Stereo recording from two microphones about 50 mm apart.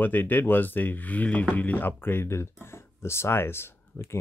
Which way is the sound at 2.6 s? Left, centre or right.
Left.